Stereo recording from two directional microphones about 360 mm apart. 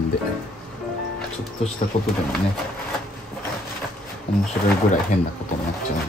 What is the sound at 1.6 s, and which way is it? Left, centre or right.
Speech, centre.